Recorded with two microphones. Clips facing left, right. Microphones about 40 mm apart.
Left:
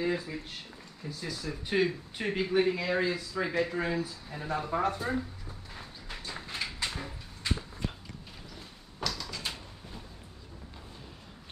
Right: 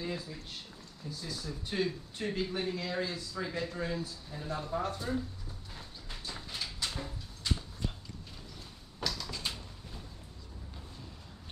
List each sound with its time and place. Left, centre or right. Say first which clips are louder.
0.0 s speech: left 7 dB; left
5.8 s a sound: left 4 dB; left
9.0 s door: left 1 dB; centre